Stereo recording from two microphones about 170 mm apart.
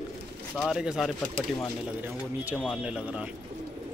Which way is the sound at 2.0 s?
10° right (ahead or behind).